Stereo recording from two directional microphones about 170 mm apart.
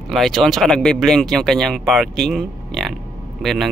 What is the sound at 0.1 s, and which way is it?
Speech, centre (ahead or behind).